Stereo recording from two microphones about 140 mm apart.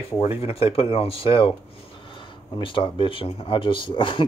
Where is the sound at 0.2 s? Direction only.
40° left (ahead or behind).